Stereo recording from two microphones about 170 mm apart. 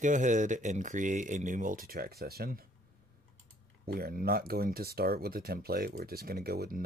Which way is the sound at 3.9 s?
60° right (ahead or behind).